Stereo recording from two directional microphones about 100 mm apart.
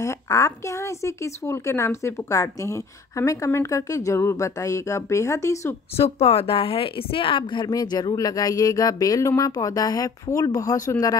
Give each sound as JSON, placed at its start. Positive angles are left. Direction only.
{"t": 0.0, "sound": "speech", "side_deg": 30}
{"t": 5.9, "sound": "a woman's voice", "side_deg": 85}
{"t": 7.6, "sound": "speech", "side_deg": 45}